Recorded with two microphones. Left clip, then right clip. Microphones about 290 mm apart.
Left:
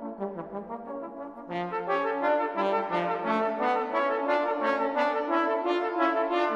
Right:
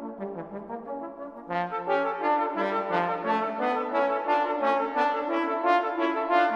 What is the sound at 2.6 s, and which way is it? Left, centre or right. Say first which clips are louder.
Brass instrument: even; centre.